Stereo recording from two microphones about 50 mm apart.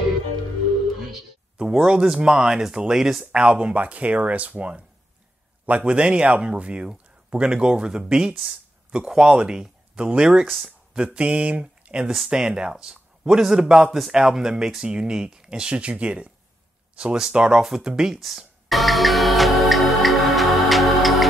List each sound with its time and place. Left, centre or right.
1.6 s speech: centre
3.3 s speech: right
10.4 s speech: centre
11.1 s speech: right; by 18.4 s centre
18.7 s music: centre